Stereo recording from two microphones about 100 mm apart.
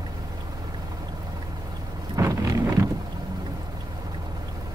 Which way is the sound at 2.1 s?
30° right (ahead or behind).